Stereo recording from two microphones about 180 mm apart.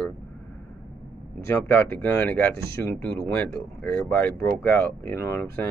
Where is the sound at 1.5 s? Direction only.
10° left (ahead or behind).